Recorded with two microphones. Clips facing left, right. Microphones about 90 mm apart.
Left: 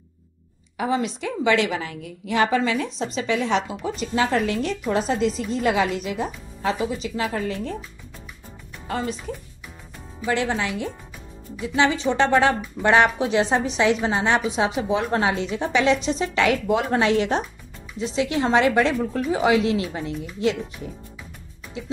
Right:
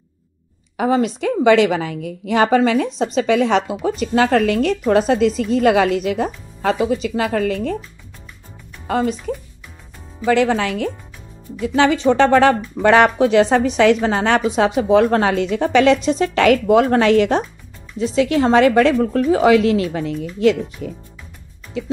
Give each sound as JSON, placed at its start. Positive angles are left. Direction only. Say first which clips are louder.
{"t": 0.7, "sound": "a woman's voice", "louder": "right 6 dB", "side_deg": -55}
{"t": 8.8, "sound": "speech", "louder": "right 8 dB", "side_deg": -75}
{"t": 10.2, "sound": "a woman's voice", "louder": "right 8 dB", "side_deg": -80}
{"t": 11.6, "sound": "a woman's voice", "louder": "right 6 dB", "side_deg": -60}
{"t": 20.8, "sound": "speech", "louder": "right 6 dB", "side_deg": -80}